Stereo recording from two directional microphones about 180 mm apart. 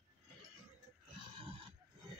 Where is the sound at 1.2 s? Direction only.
30° right (ahead or behind).